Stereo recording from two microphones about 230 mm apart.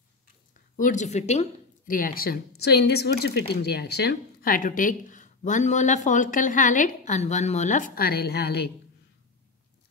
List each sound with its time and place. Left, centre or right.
0.7 s speech: left